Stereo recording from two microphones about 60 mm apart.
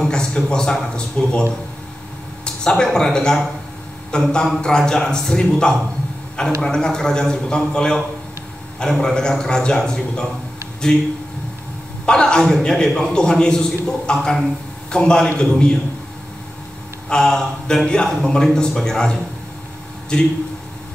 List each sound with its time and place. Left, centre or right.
0.0 s a man's voice: centre
12.1 s a man's voice: centre
17.1 s a man's voice: centre